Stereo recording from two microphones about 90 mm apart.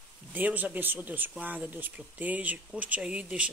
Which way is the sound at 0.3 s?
20° right (ahead or behind).